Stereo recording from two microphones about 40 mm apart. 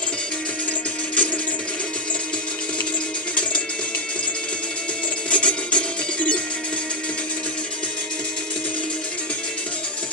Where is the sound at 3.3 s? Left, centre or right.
Left.